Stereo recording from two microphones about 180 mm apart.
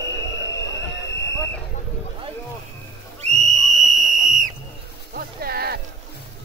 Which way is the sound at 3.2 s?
40° right (ahead or behind).